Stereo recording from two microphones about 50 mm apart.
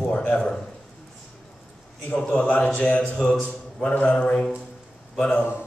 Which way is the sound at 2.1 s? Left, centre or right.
Left.